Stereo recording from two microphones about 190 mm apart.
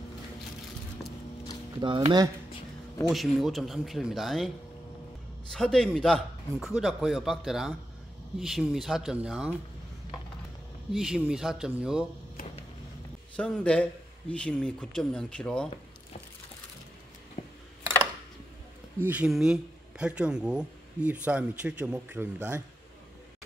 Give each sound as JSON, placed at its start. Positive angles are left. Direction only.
{"t": 1.8, "sound": "speech", "side_deg": -25}
{"t": 3.1, "sound": "a man's voice", "side_deg": 0}
{"t": 5.5, "sound": "a man's voice", "side_deg": 0}
{"t": 10.9, "sound": "a man's voice", "side_deg": -5}
{"t": 13.4, "sound": "a man's voice", "side_deg": 5}
{"t": 17.4, "sound": "a sound", "side_deg": 35}
{"t": 18.9, "sound": "speech", "side_deg": -10}